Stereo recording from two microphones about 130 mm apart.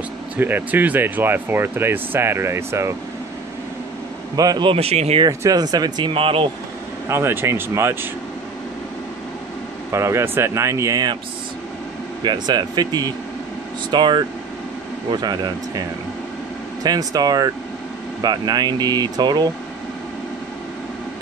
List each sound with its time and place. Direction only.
0.4 s speech: 15° right (ahead or behind)
4.4 s speech: 30° right (ahead or behind)
4.6 s speech: 50° right (ahead or behind)
5.2 s speech: 30° right (ahead or behind)
7.1 s speech: 20° right (ahead or behind)
9.8 s speech: 20° right (ahead or behind)
12.2 s speech: 35° right (ahead or behind)
16.8 s speech: 30° right (ahead or behind)